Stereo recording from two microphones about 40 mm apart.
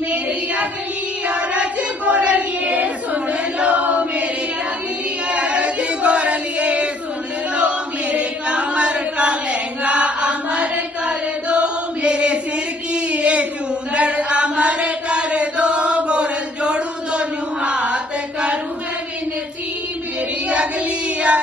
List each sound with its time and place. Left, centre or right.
1.2 s child singing: right
5.3 s chant: right
12.9 s a sound: right
13.9 s chant: right